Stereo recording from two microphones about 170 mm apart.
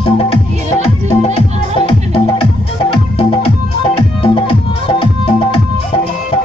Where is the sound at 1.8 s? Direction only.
30° left (ahead or behind).